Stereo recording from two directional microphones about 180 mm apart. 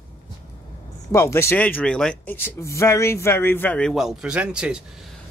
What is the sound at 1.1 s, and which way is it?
Speech, 15° left (ahead or behind).